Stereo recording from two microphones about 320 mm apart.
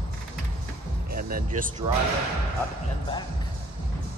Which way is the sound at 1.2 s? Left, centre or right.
Right.